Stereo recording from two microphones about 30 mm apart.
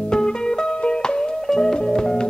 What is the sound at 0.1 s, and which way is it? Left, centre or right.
Music, left.